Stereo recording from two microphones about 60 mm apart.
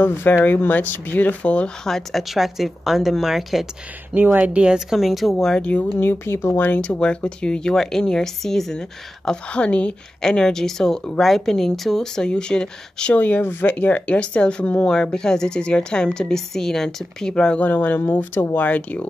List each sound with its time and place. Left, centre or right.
0.0 s speech: left
1.9 s speech: centre
2.3 s a woman's voice: centre
4.1 s speech: right; by 4.9 s centre
4.9 s a woman's voice: centre
5.6 s speech: left
5.9 s speech: left
6.7 s speech: left
7.0 s speech: centre
10.2 s speech: centre
13.2 s speech: left; by 17.6 s centre
17.6 s speech: left